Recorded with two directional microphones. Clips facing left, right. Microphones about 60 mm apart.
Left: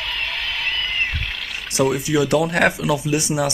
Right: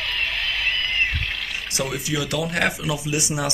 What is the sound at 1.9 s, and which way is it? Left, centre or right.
Speech, left.